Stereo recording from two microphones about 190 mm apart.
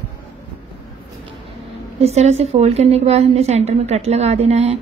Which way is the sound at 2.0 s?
35° right (ahead or behind).